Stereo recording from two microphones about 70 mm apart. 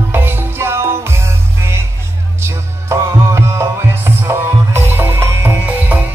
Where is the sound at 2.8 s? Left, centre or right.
Right.